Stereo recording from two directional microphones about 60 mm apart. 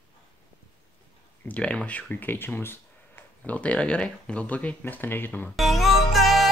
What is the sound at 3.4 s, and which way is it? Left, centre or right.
Speech, left.